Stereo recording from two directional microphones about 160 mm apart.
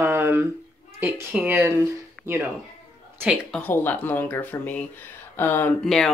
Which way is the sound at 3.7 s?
10° left (ahead or behind).